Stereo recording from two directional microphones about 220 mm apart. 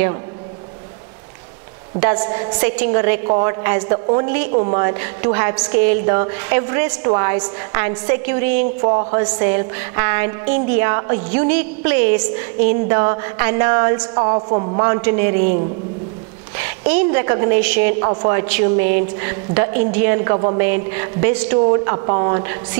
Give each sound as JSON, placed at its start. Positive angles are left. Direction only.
{"t": 2.0, "sound": "a woman's voice", "side_deg": -15}
{"t": 4.8, "sound": "a woman's voice", "side_deg": -15}
{"t": 8.8, "sound": "a woman's voice", "side_deg": -25}
{"t": 14.9, "sound": "a woman's voice", "side_deg": -15}
{"t": 16.9, "sound": "a woman's voice", "side_deg": -15}
{"t": 18.0, "sound": "a woman's voice", "side_deg": -20}
{"t": 21.8, "sound": "a woman's voice", "side_deg": -25}